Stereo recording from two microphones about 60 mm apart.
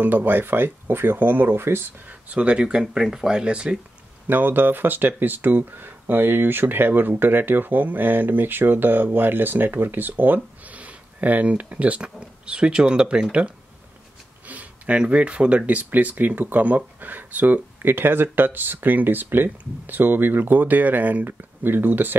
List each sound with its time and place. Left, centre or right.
0.0 s speech: right
2.0 s speech: right
4.3 s speech: right